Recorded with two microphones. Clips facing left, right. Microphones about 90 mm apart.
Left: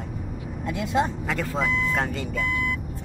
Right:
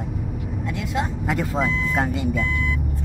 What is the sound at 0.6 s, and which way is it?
Speech, 30° left (ahead or behind).